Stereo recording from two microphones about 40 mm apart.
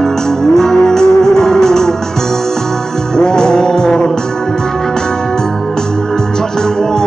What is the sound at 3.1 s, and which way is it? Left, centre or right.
Music, centre.